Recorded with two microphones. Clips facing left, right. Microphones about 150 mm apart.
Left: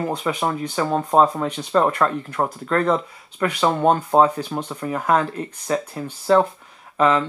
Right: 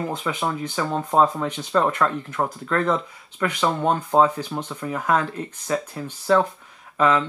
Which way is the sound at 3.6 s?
25° left (ahead or behind).